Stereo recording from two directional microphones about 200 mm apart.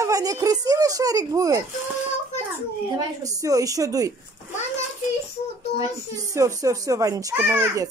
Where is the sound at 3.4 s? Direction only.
15° right (ahead or behind).